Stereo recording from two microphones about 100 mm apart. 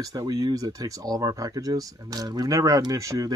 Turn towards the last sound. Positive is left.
turn(degrees=-35)  # may be behind; listen again after turning